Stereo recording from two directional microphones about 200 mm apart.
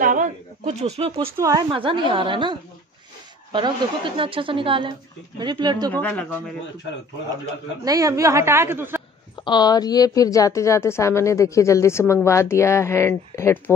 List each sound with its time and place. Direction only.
0.0 s a woman's voice: 40° right (ahead or behind); by 5.9 s 20° right (ahead or behind)
5.9 s a woman's voice: 10° left (ahead or behind)
7.8 s a woman's voice: 15° right (ahead or behind)
9.4 s a woman's voice: 20° left (ahead or behind)